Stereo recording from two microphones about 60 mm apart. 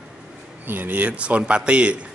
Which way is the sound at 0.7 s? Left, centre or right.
Right.